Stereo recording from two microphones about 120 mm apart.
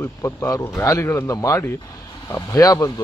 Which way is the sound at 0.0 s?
25° left (ahead or behind).